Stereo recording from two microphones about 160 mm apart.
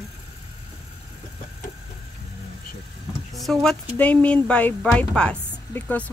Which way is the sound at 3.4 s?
Centre (ahead or behind).